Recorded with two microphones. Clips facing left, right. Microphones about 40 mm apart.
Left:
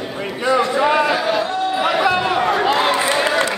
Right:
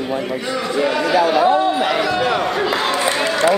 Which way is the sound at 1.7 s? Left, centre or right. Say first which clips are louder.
Even; centre.